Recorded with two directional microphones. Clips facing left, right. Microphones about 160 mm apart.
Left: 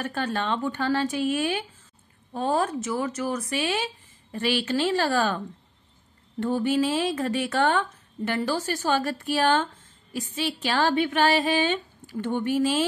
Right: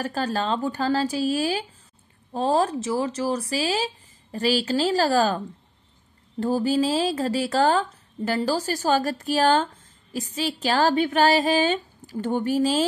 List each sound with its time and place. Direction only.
0.0 s speech: 35° right (ahead or behind)
6.4 s speech: 35° right (ahead or behind)